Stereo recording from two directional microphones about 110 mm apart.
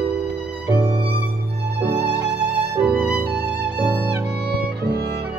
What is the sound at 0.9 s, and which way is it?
Music, 55° right (ahead or behind).